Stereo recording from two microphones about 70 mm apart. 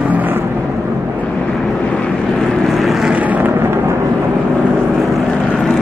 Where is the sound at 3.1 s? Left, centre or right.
Right.